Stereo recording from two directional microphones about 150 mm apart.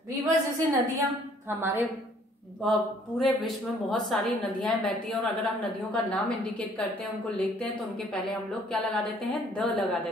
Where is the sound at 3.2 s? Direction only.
Centre (ahead or behind).